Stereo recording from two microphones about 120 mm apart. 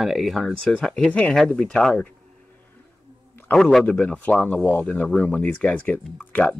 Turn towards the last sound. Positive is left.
turn(degrees=15)  # may be behind; listen again after turning